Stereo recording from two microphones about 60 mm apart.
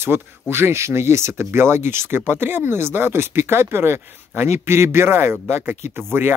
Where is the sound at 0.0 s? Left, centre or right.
Right.